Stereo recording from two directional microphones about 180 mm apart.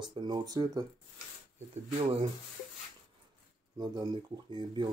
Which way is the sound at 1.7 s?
30° right (ahead or behind).